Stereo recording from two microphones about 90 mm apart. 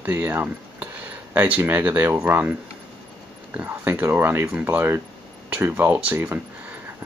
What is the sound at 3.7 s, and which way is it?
Speech, 25° right (ahead or behind).